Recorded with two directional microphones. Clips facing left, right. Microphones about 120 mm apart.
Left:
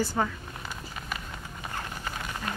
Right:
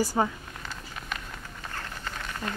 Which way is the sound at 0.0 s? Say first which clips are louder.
Right 2 dB; 10° right (ahead or behind).